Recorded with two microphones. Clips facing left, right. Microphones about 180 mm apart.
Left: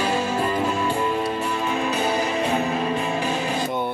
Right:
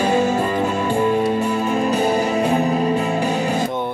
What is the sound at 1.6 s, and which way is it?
Music, 45° right (ahead or behind).